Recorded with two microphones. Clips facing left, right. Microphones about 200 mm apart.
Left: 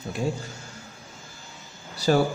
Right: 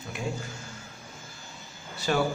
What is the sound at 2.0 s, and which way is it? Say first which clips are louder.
Speech: left 5 dB; 40° left (ahead or behind).